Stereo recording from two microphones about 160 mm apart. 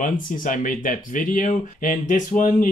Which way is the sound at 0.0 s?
55° left (ahead or behind).